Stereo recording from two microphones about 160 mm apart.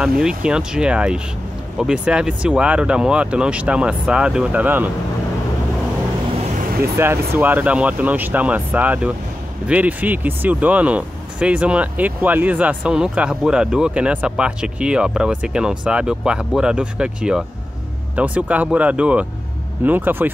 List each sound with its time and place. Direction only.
0.2 s speech: 5° right (ahead or behind)
6.6 s vehicle: 70° right (ahead or behind)
7.0 s speech: 15° right (ahead or behind)